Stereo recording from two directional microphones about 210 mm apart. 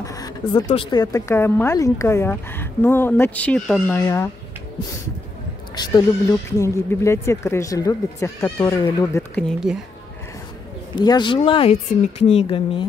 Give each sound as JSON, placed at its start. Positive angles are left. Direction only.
{"t": 0.0, "sound": "a sound", "side_deg": 15}
{"t": 0.7, "sound": "speech", "side_deg": 25}
{"t": 5.8, "sound": "speech", "side_deg": 20}
{"t": 9.6, "sound": "speech", "side_deg": -5}
{"t": 11.0, "sound": "speech", "side_deg": 20}